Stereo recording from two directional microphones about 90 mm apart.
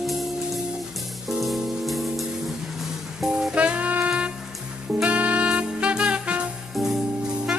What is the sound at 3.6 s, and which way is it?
Saxophone, 15° right (ahead or behind).